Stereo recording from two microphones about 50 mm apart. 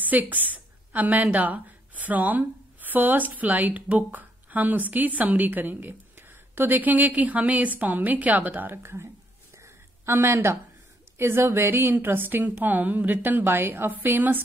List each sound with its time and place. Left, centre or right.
0.0 s a woman's voice: right
10.1 s a woman's voice: right
12.4 s a woman's voice: right